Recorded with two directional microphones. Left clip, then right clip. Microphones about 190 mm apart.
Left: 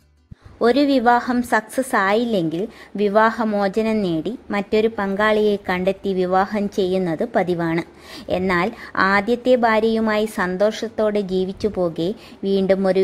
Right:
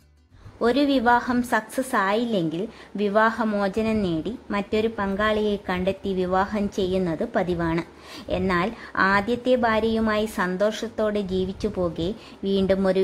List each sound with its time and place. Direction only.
0.6 s a woman's voice: 20° left (ahead or behind)